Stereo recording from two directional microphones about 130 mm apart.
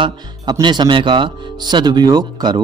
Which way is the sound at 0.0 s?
35° right (ahead or behind).